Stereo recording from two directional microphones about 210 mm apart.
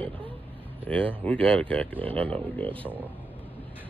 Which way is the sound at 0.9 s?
5° left (ahead or behind).